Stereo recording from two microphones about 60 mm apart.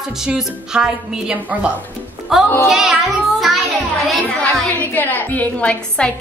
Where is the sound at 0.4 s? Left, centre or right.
Centre.